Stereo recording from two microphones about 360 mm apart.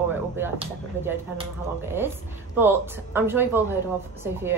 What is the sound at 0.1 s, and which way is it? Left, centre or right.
A woman's voice, centre.